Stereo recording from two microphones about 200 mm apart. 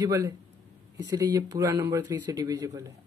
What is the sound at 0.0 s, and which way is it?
Speech, 15° right (ahead or behind).